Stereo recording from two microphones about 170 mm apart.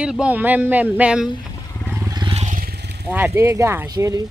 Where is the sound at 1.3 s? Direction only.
25° left (ahead or behind).